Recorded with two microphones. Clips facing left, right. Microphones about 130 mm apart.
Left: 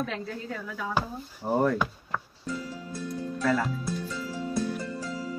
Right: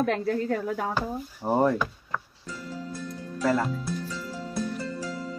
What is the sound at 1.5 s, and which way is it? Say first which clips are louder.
Speech: right 2 dB; 20° right (ahead or behind).